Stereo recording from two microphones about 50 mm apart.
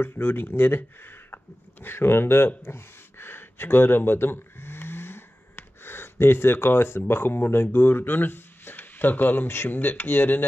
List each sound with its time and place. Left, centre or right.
0.0 s speech: left
2.6 s a sound: left
7.1 s speech: left